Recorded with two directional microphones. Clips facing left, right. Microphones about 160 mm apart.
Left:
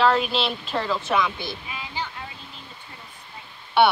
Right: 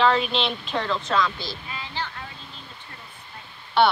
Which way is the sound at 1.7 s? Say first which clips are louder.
Even; 10° left (ahead or behind).